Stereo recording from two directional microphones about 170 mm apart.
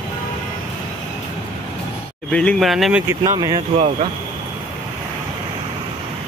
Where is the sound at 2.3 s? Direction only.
5° left (ahead or behind).